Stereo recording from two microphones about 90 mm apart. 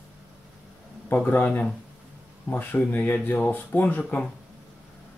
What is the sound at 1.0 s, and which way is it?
Speech, 20° left (ahead or behind).